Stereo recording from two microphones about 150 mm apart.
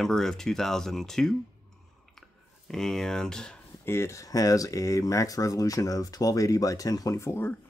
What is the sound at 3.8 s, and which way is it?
Speech, 15° left (ahead or behind).